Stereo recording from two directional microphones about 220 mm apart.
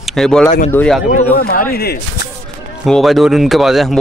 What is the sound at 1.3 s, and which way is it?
Speech, 45° left (ahead or behind).